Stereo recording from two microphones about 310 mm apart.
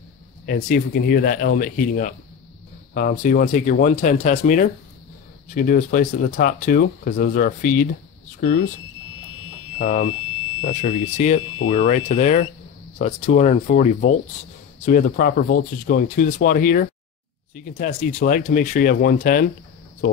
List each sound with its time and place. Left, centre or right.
0.5 s speech: left
9.8 s speech: left